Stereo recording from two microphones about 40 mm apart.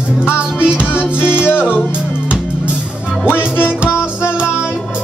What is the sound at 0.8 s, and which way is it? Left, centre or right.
Music, left.